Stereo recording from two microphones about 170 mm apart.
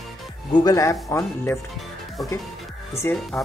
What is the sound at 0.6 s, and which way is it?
Speech, 20° left (ahead or behind).